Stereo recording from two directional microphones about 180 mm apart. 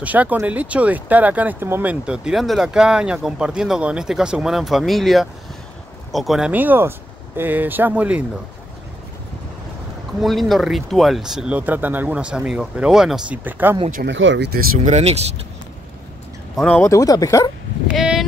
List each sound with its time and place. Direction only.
0.0 s speech: 10° right (ahead or behind)
10.2 s speech: centre (ahead or behind)
14.0 s speech: 90° right; by 14.7 s 65° right (ahead or behind)
14.8 s speech: 40° right (ahead or behind)
16.5 s speech: 5° left (ahead or behind)
16.8 s speech: 20° left (ahead or behind)
17.8 s a sound: 5° right (ahead or behind)